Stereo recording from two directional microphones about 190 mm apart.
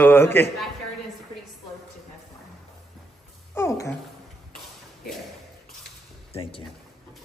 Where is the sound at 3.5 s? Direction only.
15° left (ahead or behind).